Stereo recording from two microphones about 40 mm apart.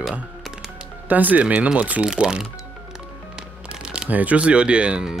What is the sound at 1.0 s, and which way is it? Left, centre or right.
Speech, right.